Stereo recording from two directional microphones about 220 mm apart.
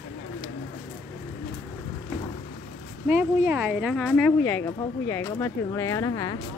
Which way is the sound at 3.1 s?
10° right (ahead or behind).